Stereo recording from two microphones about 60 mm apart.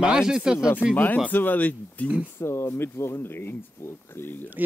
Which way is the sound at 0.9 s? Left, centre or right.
Left.